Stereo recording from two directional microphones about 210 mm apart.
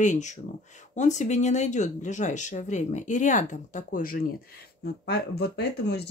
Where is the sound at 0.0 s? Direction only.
35° left (ahead or behind).